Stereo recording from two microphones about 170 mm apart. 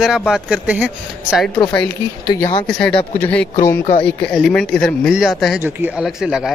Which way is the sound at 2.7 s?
5° left (ahead or behind).